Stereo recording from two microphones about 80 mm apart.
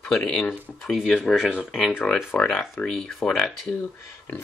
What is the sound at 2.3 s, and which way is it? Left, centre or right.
Speech, left.